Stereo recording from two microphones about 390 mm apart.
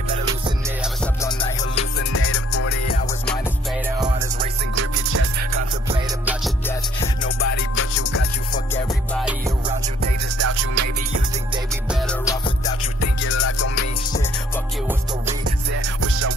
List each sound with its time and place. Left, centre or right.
1.0 s music: centre
2.1 s music: left
4.7 s music: right
5.9 s music: centre
7.3 s music: left
8.7 s music: centre
10.3 s music: right
11.5 s music: centre
12.3 s music: centre
13.3 s music: left
15.7 s music: right